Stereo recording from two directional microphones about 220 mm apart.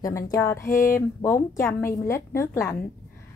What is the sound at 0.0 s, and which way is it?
A woman's voice, 15° left (ahead or behind).